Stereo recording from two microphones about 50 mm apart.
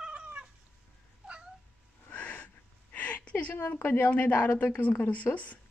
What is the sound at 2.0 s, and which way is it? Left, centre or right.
Gasp, left.